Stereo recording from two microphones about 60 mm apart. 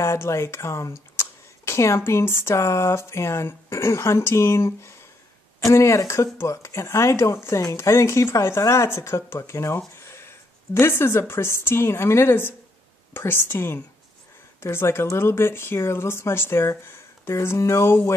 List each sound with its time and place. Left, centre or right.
0.0 s speech: left